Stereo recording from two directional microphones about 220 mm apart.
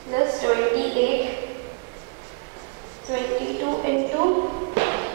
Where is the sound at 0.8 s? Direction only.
40° right (ahead or behind).